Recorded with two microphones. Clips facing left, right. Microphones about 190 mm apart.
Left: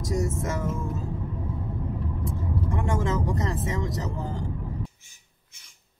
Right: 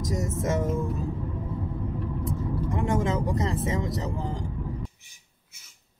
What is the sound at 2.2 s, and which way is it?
Speech, 20° right (ahead or behind).